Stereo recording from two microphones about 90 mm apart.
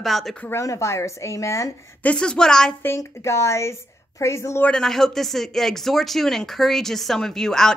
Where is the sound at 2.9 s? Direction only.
30° left (ahead or behind).